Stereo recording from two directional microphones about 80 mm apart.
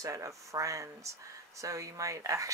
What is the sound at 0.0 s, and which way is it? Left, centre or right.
Speech, right.